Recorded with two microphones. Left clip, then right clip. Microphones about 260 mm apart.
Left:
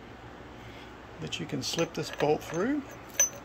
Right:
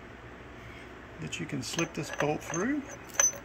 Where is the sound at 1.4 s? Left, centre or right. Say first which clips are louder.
Left 2 dB; left.